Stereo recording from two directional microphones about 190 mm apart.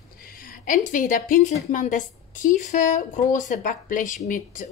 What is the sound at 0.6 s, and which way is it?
Speech, 45° left (ahead or behind).